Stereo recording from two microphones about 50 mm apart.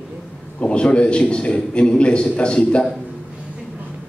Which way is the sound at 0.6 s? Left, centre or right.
Centre.